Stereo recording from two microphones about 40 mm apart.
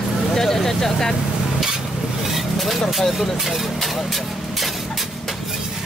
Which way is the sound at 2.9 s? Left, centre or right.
Centre.